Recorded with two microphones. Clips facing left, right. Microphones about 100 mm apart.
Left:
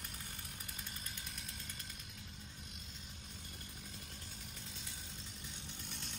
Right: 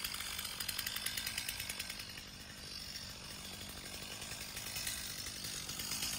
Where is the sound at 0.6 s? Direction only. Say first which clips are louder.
Right 2 dB; 90° right.